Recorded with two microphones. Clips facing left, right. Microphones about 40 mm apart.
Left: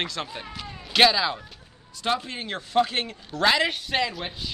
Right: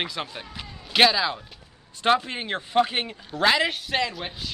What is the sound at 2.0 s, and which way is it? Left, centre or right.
A man's voice, right.